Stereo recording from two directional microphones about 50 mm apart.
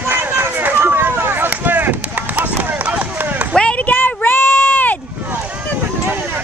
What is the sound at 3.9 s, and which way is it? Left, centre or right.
Child singing, left.